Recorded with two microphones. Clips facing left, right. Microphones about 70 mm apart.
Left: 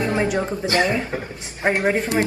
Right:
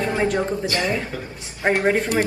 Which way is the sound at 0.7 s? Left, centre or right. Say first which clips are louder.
Left 4 dB; left.